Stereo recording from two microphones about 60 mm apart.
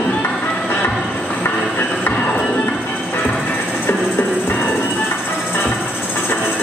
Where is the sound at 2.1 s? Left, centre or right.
Left.